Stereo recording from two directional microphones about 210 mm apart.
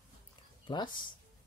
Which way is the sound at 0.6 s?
20° left (ahead or behind).